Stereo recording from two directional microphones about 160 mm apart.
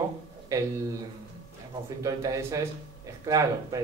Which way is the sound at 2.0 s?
20° right (ahead or behind).